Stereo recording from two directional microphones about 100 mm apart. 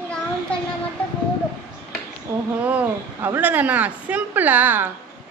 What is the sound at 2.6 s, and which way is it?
A woman's voice, 20° right (ahead or behind).